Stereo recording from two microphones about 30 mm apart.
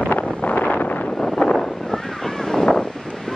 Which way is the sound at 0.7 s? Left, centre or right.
Left.